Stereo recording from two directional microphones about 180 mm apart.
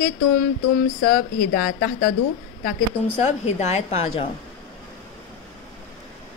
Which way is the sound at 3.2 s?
40° left (ahead or behind).